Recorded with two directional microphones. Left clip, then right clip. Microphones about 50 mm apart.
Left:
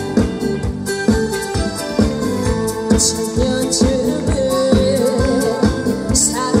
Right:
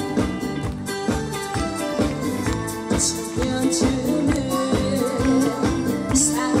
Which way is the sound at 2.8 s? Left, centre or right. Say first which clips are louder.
Left 6 dB; left.